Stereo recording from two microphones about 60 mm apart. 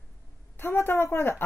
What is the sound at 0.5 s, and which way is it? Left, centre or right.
Speech, left.